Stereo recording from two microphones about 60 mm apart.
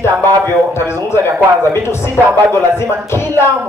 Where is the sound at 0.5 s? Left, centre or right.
Left.